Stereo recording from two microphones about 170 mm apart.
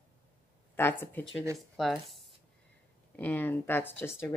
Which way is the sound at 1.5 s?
Centre (ahead or behind).